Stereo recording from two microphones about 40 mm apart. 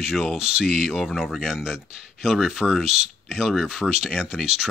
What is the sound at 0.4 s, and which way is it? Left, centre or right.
Speech, centre.